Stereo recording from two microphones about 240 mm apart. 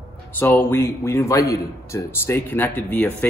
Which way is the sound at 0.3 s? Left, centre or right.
Centre.